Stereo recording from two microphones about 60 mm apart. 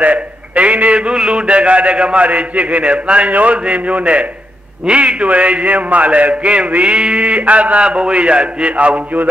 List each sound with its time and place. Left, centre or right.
0.0 s a man's voice: right